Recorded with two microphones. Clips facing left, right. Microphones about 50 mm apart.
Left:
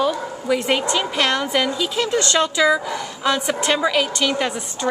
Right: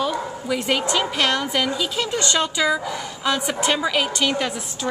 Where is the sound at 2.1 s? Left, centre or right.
Centre.